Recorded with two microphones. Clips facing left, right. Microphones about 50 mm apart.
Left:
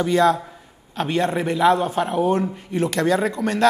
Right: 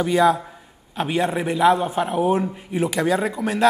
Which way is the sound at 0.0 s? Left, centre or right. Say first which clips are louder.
Even; centre.